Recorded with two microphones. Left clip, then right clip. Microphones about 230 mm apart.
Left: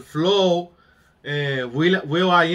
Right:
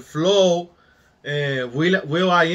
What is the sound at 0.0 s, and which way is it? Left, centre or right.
Speech, centre.